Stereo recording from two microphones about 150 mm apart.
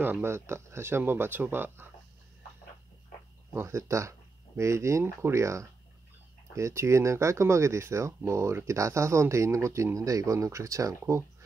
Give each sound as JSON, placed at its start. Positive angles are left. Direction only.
{"t": 0.0, "sound": "speech", "side_deg": -15}
{"t": 3.5, "sound": "speech", "side_deg": -20}